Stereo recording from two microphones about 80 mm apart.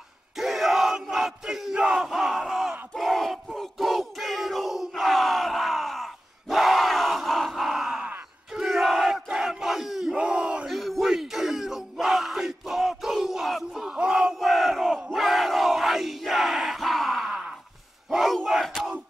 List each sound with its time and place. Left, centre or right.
0.4 s crowd: centre
2.9 s battle cry: centre
6.5 s crowd: centre
10.7 s yell: centre
13.9 s battle cry: centre
15.0 s crowd: centre